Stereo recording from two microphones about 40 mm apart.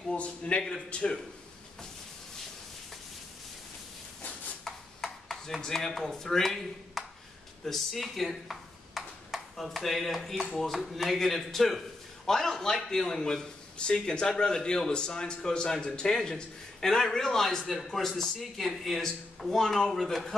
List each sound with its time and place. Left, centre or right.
0.1 s speech: left
4.6 s a sound: centre
10.7 s a man's voice: centre
13.7 s a man's voice: left; by 20.2 s centre